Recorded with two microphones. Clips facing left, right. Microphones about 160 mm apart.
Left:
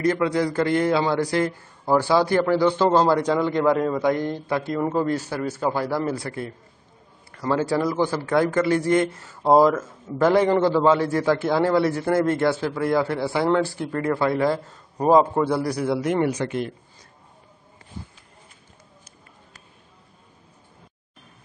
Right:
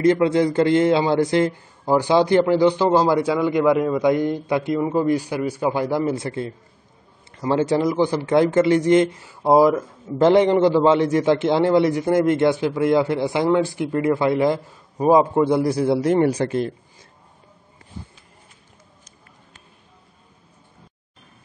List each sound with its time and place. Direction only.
0.0 s a man's voice: 25° right (ahead or behind)